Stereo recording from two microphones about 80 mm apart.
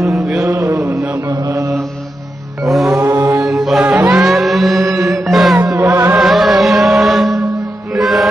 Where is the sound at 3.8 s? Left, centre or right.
Centre.